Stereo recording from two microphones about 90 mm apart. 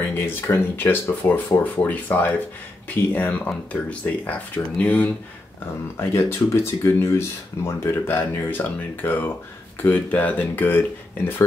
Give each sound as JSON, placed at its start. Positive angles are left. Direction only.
{"t": 0.0, "sound": "speech", "side_deg": 25}
{"t": 5.9, "sound": "speech", "side_deg": 25}